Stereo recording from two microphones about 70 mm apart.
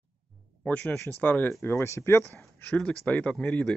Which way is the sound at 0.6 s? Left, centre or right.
Left.